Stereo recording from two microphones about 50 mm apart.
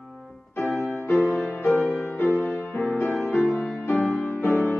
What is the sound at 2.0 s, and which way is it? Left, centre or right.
Music, left.